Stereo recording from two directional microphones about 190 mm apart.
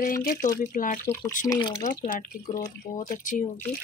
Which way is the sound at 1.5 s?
20° left (ahead or behind).